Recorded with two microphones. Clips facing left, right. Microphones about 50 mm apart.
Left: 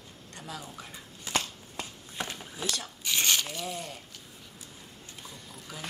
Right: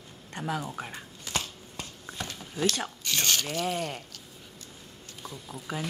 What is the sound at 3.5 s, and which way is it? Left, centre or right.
Speech, right.